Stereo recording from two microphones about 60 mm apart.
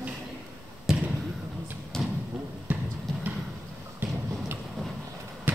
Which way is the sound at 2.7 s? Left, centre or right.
Right.